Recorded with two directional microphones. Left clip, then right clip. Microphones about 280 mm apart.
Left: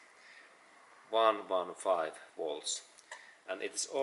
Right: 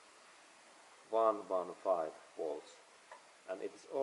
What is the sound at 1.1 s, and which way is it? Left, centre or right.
Speech, centre.